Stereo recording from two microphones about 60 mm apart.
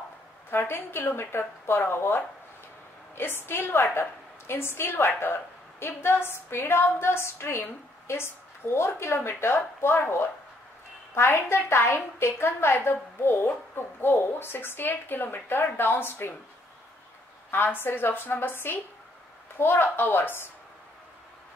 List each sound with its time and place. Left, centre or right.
0.5 s a woman's voice: left
17.5 s a woman's voice: left